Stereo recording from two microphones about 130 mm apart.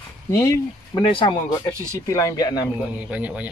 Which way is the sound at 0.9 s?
40° left (ahead or behind).